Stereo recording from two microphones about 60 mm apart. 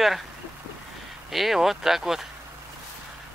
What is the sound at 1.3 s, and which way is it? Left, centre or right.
Speech, centre.